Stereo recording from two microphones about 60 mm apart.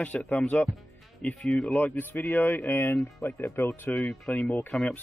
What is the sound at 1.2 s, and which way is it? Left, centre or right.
Speech, left.